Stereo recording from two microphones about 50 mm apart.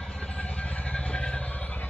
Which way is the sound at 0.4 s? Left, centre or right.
Left.